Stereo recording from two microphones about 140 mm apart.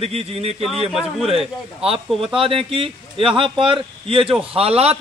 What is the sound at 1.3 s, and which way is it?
Speech, 45° right (ahead or behind).